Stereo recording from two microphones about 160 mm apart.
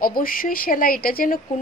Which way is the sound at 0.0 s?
65° left (ahead or behind).